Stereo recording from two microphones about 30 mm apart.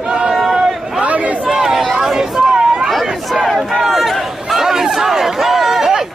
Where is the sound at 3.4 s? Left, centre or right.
Centre.